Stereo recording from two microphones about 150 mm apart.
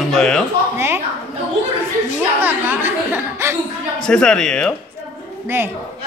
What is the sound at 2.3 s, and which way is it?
Speech, 15° right (ahead or behind).